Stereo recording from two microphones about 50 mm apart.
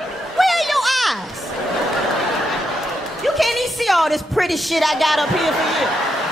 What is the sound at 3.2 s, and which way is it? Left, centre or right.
A woman's voice, centre.